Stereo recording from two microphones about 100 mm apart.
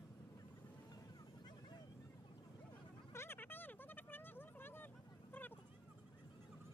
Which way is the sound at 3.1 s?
20° left (ahead or behind).